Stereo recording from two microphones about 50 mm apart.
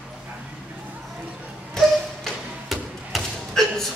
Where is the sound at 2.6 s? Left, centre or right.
Centre.